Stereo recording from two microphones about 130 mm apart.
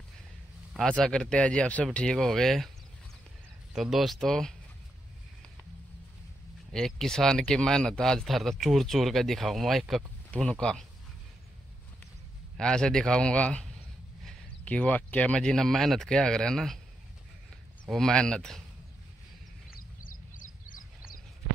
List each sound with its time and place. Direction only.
0.7 s speech: 5° left (ahead or behind)
3.7 s speech: 5° right (ahead or behind)
6.7 s speech: 5° left (ahead or behind)
12.5 s speech: 5° left (ahead or behind)
17.8 s speech: 5° left (ahead or behind)
20.0 s a sound: 90° left